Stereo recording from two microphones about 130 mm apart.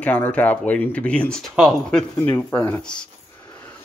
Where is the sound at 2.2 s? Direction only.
15° left (ahead or behind).